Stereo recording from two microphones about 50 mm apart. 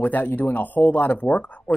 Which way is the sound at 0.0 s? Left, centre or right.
Left.